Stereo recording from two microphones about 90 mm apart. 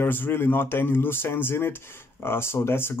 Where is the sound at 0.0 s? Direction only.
25° left (ahead or behind).